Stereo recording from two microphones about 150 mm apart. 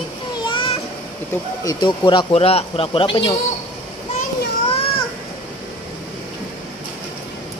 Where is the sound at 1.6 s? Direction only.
30° left (ahead or behind).